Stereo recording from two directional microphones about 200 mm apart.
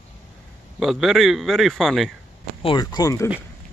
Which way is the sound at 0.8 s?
Centre (ahead or behind).